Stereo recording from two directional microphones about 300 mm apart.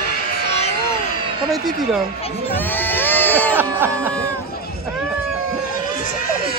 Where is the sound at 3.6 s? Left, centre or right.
Centre.